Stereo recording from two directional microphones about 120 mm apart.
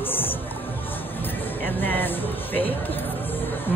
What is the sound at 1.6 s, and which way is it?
Speech, 15° left (ahead or behind).